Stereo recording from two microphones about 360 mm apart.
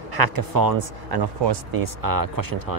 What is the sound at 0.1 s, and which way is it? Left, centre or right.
Speech, right.